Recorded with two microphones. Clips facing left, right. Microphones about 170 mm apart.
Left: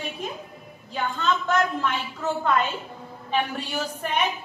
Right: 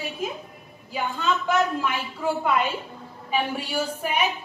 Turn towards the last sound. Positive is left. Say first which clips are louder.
# right 1 dB
turn(degrees=-10)  # may be behind; listen again after turning